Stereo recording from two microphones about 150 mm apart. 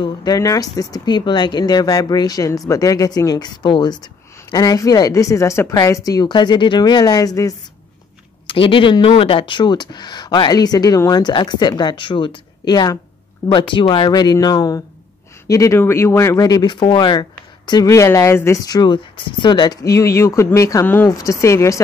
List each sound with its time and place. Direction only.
0.0 s speech: 25° left (ahead or behind)
8.5 s speech: 35° left (ahead or behind); by 21.8 s 20° left (ahead or behind)